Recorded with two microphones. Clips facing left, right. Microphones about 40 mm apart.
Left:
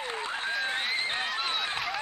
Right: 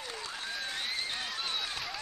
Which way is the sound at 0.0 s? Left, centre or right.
Left.